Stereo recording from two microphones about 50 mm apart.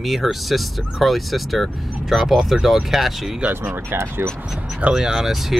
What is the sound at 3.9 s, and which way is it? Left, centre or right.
Speech, right.